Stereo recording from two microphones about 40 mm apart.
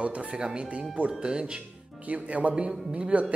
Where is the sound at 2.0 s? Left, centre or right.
Right.